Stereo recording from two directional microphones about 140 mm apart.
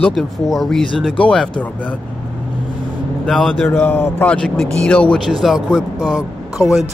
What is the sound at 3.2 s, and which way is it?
A man's voice, 5° left (ahead or behind).